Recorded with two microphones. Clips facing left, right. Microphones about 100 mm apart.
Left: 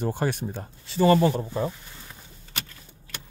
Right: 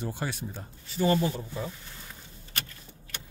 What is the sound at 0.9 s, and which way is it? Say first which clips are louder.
Speech: left 6 dB; 85° left.